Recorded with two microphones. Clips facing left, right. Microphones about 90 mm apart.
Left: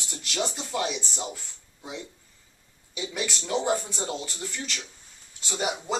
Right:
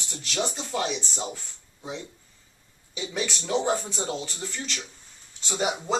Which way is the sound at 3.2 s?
5° left (ahead or behind).